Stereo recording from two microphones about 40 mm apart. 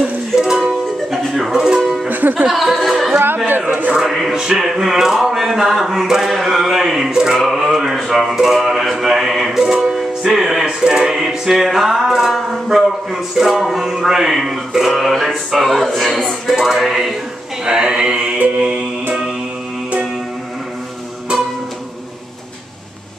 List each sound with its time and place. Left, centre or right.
0.4 s music: centre
1.1 s music: centre
1.5 s music: centre
2.0 s music: right
2.5 s speech: centre
3.4 s speech: right
4.0 s music: centre
10.6 s music: centre
11.1 s music: centre
15.6 s speech: centre
17.6 s mantra: centre